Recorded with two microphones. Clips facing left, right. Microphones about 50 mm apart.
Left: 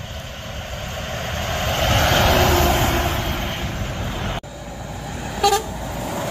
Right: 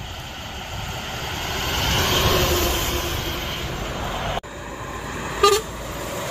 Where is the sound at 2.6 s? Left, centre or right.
Left.